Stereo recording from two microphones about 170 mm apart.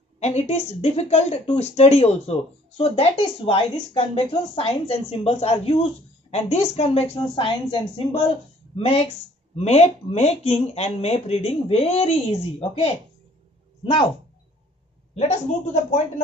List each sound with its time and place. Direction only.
0.2 s speech: 40° left (ahead or behind)
15.1 s speech: 40° left (ahead or behind)